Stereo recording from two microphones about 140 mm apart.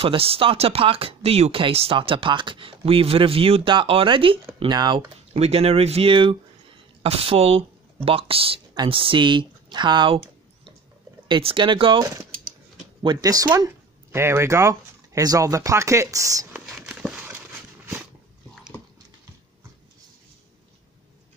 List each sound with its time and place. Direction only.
0.0 s speech: 40° right (ahead or behind)
13.0 s speech: 30° right (ahead or behind)
16.6 s a sound: centre (ahead or behind)